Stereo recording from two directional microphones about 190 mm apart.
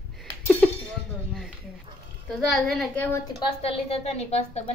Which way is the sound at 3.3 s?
30° left (ahead or behind).